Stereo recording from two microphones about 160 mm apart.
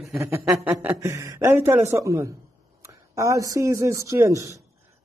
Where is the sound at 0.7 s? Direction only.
15° right (ahead or behind).